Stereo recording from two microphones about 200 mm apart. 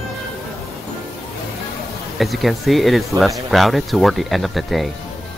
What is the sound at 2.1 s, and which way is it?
Speech, centre (ahead or behind).